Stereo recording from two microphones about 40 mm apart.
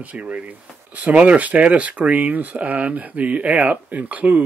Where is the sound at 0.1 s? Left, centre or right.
Right.